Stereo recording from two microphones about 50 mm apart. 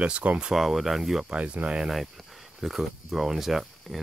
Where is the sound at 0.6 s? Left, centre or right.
Centre.